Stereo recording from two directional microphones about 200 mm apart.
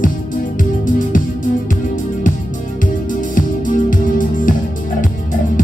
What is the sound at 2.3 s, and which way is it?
Music, 40° left (ahead or behind).